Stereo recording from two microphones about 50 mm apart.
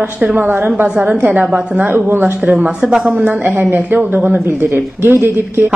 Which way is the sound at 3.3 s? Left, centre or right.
Right.